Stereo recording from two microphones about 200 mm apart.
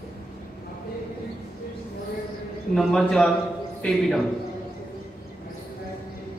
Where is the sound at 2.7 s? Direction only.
Centre (ahead or behind).